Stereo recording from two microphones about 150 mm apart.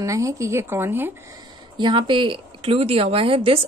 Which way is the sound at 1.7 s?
30° right (ahead or behind).